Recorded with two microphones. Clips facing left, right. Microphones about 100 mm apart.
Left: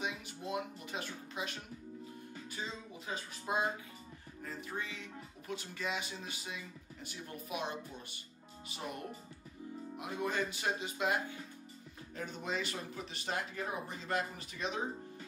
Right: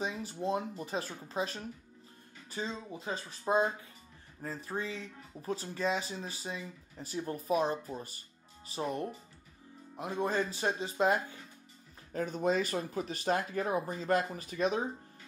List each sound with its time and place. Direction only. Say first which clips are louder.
0.0 s speech: right 6 dB; 35° right (ahead or behind)